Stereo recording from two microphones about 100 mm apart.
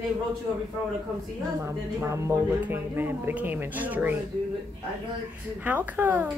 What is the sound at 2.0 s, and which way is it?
Speech, 30° right (ahead or behind).